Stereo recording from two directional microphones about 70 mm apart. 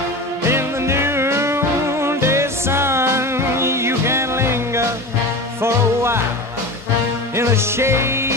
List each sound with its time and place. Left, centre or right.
0.5 s music: right
7.3 s music: right